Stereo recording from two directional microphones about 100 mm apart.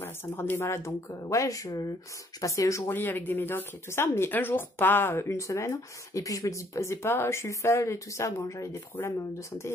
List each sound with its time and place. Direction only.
0.0 s speech: 20° left (ahead or behind)
2.9 s speech: 20° left (ahead or behind)